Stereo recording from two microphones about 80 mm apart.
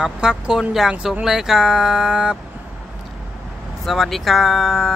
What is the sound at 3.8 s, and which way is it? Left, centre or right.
Speech, centre.